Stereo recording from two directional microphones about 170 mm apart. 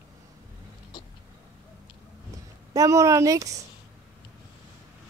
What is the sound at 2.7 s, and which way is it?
Speech, 20° right (ahead or behind).